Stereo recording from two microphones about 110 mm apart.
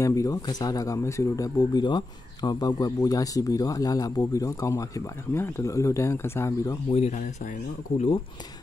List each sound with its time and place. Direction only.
0.0 s speech: 30° left (ahead or behind)
6.9 s speech: 70° left (ahead or behind)